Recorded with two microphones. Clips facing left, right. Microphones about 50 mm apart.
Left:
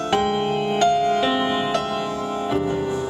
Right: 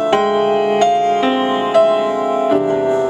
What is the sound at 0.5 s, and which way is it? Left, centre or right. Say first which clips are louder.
Music: right 6 dB; right.